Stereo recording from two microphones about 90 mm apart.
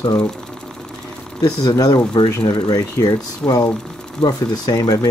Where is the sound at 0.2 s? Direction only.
10° left (ahead or behind).